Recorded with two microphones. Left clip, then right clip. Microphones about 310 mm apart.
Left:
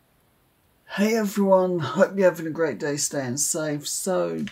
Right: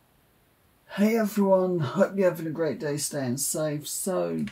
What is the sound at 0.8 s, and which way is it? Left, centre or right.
Speech, left.